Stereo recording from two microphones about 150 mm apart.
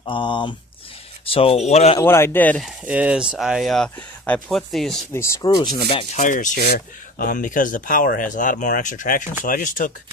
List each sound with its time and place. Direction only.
0.0 s speech: 35° left (ahead or behind)
2.0 s a man's voice: 15° left (ahead or behind)
2.6 s speech: 10° right (ahead or behind)
5.1 s speech: 20° left (ahead or behind)
6.1 s speech: 55° left (ahead or behind)